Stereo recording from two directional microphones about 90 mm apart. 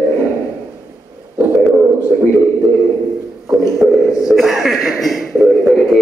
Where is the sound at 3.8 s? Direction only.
10° right (ahead or behind).